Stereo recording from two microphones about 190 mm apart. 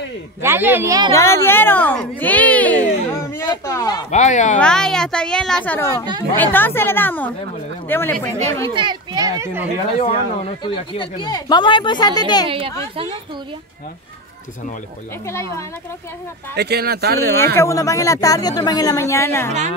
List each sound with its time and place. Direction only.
0.4 s speech: 10° right (ahead or behind)
1.1 s speech: 15° left (ahead or behind)
4.1 s speech: 40° left (ahead or behind)
4.6 s a woman's voice: 5° left (ahead or behind)
8.7 s a child's voice: 20° right (ahead or behind)
9.9 s speech: 30° left (ahead or behind)
12.4 s a child's voice: 30° right (ahead or behind)
16.5 s speech: 60° right (ahead or behind)
17.6 s speech: 15° left (ahead or behind)